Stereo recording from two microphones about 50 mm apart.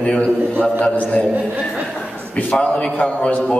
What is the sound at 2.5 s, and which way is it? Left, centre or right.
Speech, left.